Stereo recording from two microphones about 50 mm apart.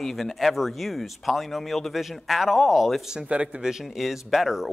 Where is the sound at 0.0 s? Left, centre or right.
Centre.